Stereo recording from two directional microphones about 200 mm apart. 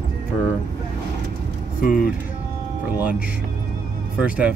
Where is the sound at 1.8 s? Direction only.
45° left (ahead or behind).